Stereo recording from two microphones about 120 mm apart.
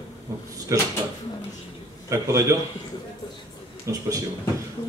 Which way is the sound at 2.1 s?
25° right (ahead or behind).